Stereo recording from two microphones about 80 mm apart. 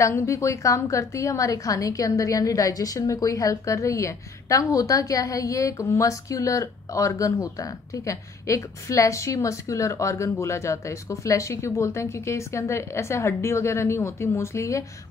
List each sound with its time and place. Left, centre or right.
0.0 s a woman's voice: left